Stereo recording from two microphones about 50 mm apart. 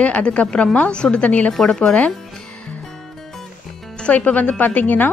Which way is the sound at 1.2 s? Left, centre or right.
Left.